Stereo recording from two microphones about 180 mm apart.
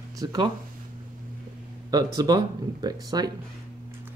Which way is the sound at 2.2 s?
20° right (ahead or behind).